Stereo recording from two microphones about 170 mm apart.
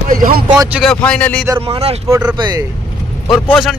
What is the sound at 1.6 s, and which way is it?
Speech, 30° right (ahead or behind).